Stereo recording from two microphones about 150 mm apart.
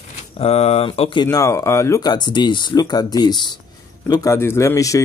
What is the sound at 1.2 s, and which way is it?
Speech, 20° left (ahead or behind).